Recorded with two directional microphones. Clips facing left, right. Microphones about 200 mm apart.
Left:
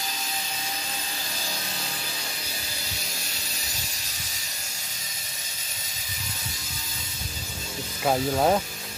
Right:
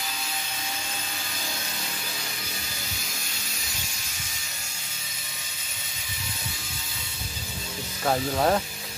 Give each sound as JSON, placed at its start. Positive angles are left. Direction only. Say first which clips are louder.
{"t": 8.0, "sound": "speech", "louder": "left 1 dB", "side_deg": 10}